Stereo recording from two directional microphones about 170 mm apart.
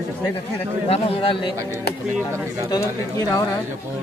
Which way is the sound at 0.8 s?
35° left (ahead or behind).